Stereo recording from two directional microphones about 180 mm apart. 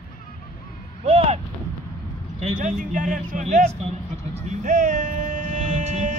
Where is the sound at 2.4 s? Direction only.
45° right (ahead or behind).